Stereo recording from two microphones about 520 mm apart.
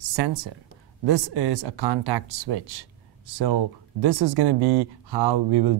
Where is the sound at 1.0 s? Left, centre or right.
Right.